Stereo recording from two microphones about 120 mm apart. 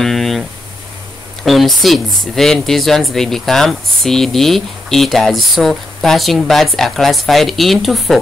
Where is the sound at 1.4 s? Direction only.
Centre (ahead or behind).